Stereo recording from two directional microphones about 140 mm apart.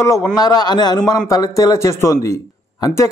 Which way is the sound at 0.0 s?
20° left (ahead or behind).